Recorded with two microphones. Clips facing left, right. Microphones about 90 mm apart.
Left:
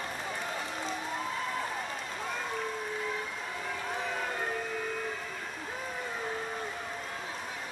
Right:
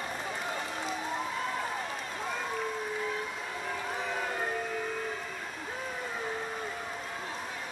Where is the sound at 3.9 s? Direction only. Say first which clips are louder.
Even; centre (ahead or behind).